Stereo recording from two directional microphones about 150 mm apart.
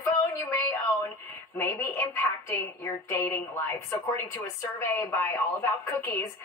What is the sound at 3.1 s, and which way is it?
A woman's voice, 15° left (ahead or behind).